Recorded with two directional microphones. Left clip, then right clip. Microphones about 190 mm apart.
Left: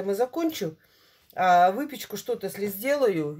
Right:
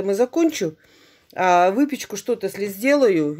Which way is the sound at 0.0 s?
50° right (ahead or behind).